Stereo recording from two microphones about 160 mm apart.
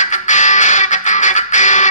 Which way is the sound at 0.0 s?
50° left (ahead or behind).